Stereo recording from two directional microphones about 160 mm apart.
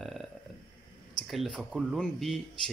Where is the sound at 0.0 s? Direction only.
Centre (ahead or behind).